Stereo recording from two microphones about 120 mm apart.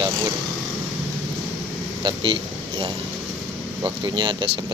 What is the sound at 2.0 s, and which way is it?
Speech, 40° right (ahead or behind).